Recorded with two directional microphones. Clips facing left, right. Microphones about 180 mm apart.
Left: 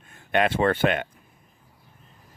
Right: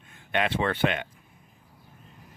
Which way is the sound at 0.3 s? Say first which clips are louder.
Left 5 dB; 45° left (ahead or behind).